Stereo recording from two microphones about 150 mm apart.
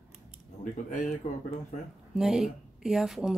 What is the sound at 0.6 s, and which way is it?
Speech, 60° left (ahead or behind).